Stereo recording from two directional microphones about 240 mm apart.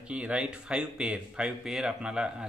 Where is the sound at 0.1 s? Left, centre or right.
Centre.